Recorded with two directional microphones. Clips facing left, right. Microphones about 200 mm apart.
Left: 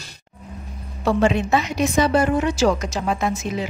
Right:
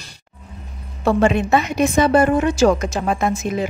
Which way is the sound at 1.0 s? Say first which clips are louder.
Right 2 dB; 55° right (ahead or behind).